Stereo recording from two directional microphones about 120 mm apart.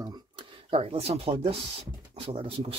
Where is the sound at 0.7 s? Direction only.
55° right (ahead or behind).